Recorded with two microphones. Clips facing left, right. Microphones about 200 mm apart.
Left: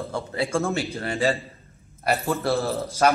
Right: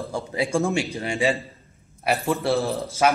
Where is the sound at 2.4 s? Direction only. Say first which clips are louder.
Right 1 dB; 15° right (ahead or behind).